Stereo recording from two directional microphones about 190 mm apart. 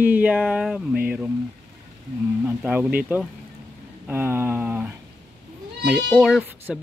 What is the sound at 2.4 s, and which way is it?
Speech, 10° right (ahead or behind).